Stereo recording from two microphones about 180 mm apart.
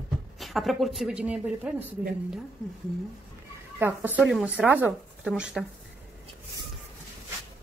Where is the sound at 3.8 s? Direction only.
10° right (ahead or behind).